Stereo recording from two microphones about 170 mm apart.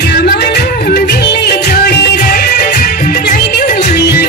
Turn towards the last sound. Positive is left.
turn(degrees=65)  # may be behind; listen again after turning